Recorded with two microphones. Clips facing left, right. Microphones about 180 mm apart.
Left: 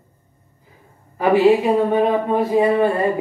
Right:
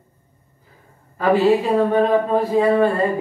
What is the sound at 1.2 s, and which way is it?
Speech, 15° left (ahead or behind).